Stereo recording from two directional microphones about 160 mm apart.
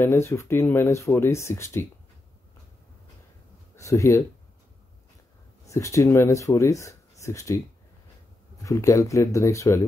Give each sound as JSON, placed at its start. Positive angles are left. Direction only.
{"t": 0.0, "sound": "speech", "side_deg": 15}
{"t": 3.7, "sound": "speech", "side_deg": 20}
{"t": 5.7, "sound": "speech", "side_deg": 20}
{"t": 8.6, "sound": "speech", "side_deg": 20}